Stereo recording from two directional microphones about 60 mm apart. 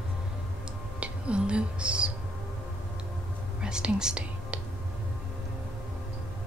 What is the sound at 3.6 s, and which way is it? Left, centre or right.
Speech, centre.